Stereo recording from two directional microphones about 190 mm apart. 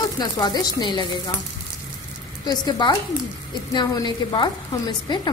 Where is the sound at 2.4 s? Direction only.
20° left (ahead or behind).